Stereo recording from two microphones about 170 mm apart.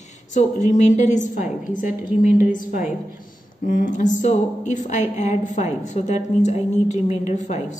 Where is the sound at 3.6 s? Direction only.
50° left (ahead or behind).